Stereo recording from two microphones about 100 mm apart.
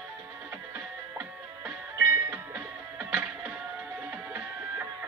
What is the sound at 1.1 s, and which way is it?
Music, 20° right (ahead or behind).